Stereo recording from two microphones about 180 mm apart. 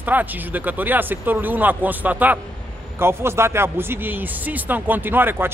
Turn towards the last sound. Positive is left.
turn(degrees=-10)  # may be behind; listen again after turning